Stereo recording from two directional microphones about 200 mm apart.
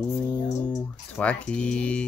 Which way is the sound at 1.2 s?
5° left (ahead or behind).